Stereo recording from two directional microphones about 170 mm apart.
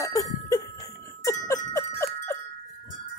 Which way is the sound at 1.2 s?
20° left (ahead or behind).